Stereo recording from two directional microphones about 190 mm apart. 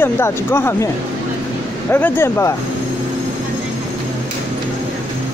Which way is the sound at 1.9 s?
10° left (ahead or behind).